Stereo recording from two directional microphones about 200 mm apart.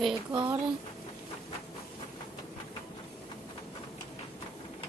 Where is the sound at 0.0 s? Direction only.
Centre (ahead or behind).